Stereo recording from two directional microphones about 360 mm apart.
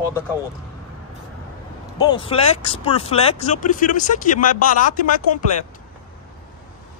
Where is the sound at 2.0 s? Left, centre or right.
Centre.